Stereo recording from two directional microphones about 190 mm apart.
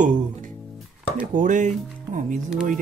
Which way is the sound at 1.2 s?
45° right (ahead or behind).